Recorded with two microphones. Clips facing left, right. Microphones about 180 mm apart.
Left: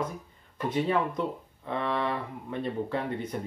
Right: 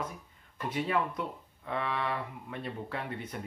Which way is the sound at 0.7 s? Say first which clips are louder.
Left 4 dB; 30° left (ahead or behind).